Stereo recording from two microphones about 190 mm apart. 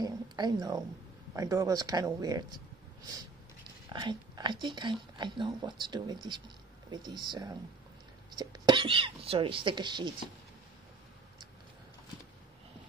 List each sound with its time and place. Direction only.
0.0 s a sound: 20° right (ahead or behind)
1.3 s speech: 15° right (ahead or behind)
3.9 s speech: 25° right (ahead or behind)